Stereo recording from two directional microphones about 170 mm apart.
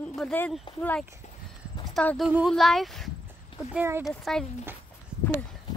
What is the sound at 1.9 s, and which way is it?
Speech, 5° left (ahead or behind).